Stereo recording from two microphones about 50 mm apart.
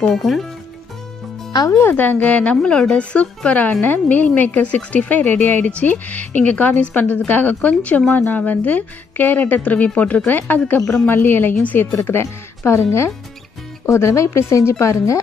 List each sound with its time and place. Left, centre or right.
0.1 s speech: centre
1.9 s a woman's voice: left
2.5 s a woman's voice: centre; by 12.2 s left
12.2 s speech: left
13.8 s a woman's voice: left